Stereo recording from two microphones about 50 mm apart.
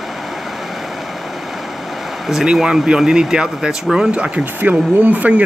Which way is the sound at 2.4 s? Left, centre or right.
Centre.